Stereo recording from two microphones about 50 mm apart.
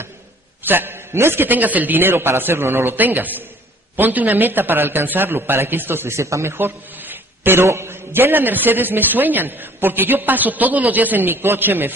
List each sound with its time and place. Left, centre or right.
0.7 s a man's voice: right
6.1 s a man's voice: right
6.5 s a sound: right
7.6 s a man's voice: right